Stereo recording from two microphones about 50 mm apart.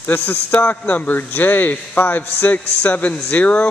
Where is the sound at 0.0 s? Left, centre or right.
Left.